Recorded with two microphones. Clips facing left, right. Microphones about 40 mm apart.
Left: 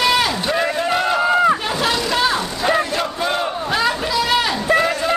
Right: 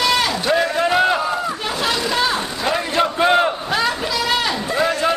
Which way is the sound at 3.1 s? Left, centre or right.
Right.